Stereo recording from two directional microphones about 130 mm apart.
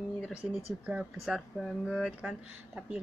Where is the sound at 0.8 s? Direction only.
5° right (ahead or behind).